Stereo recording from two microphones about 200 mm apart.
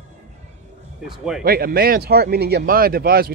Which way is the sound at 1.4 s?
50° right (ahead or behind).